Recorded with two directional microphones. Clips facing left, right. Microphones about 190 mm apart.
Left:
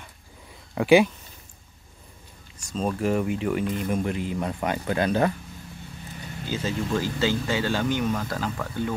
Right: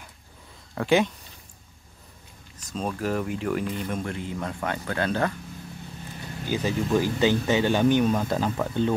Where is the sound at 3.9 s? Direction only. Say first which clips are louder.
Left 4 dB; 15° left (ahead or behind).